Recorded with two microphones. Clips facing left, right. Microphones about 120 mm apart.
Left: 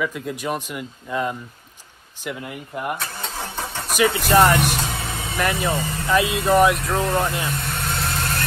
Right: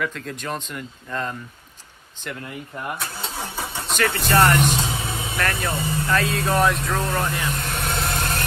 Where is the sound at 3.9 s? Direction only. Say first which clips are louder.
Left 3 dB; 10° left (ahead or behind).